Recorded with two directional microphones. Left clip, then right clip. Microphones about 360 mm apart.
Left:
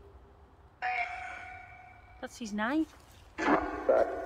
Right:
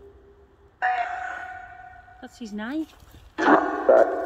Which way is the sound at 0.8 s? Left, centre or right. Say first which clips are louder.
Right 9 dB; centre.